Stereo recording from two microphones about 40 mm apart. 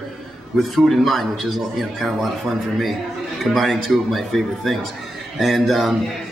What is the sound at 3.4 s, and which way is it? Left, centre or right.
A man's voice, centre.